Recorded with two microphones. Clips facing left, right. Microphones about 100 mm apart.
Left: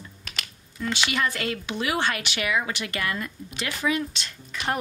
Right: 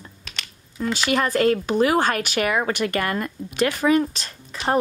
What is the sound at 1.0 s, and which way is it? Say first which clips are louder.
A woman's voice: right 10 dB; 40° right (ahead or behind).